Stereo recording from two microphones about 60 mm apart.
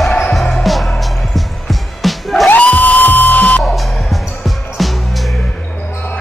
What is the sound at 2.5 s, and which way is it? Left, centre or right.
Music, left.